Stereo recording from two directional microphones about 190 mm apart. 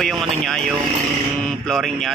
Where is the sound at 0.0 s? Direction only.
Centre (ahead or behind).